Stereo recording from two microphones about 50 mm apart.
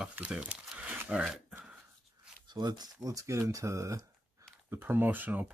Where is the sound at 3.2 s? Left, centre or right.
Right.